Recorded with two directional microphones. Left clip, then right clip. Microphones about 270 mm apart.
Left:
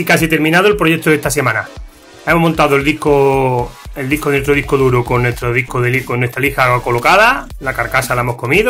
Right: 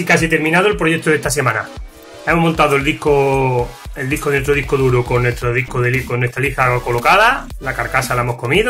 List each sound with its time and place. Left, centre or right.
0.0 s speech: left